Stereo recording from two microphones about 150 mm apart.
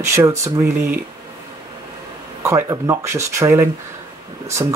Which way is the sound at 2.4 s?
20° right (ahead or behind).